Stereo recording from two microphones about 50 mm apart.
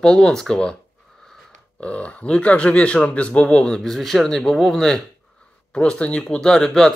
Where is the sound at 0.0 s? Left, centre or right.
Centre.